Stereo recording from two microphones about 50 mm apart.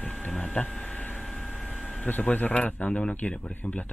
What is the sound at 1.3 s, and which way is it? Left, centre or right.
Vehicle, centre.